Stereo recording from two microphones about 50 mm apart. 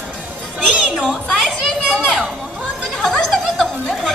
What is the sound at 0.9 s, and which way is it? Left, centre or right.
Children playing, centre.